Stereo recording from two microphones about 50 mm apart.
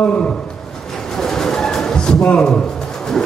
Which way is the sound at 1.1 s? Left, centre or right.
Centre.